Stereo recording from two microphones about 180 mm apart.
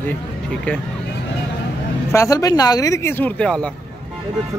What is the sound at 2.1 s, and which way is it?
Speech, 20° left (ahead or behind).